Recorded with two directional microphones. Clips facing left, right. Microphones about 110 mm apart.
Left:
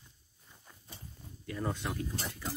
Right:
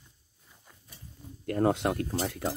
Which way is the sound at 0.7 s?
Centre (ahead or behind).